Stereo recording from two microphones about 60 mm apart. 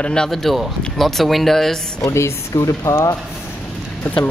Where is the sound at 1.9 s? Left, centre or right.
Left.